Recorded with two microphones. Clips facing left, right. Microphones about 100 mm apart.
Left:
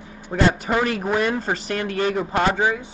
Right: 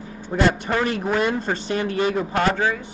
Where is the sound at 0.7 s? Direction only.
10° left (ahead or behind).